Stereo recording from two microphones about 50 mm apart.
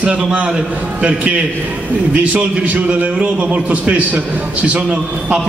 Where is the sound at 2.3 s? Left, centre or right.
Right.